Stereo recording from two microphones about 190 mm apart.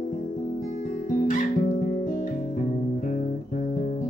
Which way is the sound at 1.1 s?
45° left (ahead or behind).